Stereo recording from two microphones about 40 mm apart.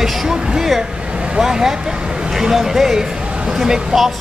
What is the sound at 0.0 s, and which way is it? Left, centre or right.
Speech, centre.